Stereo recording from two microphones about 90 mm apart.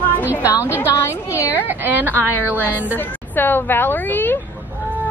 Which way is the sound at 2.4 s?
20° left (ahead or behind).